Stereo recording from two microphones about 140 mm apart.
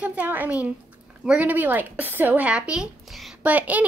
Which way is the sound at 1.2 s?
10° right (ahead or behind).